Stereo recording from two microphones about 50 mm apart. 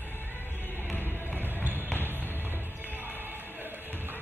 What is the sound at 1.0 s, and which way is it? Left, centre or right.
Music, right.